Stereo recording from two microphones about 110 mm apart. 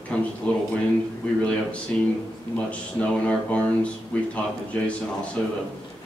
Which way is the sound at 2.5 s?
10° left (ahead or behind).